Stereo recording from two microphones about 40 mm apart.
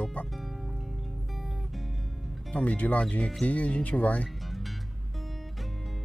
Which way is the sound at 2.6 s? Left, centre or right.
Left.